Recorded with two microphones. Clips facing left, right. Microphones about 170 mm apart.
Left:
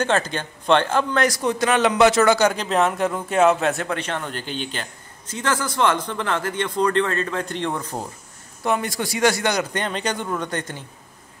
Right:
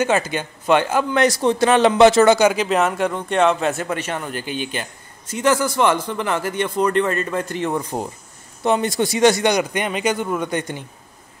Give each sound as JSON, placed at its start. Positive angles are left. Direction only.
{"t": 0.0, "sound": "speech", "side_deg": -10}
{"t": 1.2, "sound": "a man's voice", "side_deg": -25}
{"t": 2.3, "sound": "speech", "side_deg": -5}